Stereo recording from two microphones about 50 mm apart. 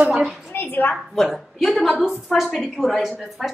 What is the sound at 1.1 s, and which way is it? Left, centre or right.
A woman's voice, centre.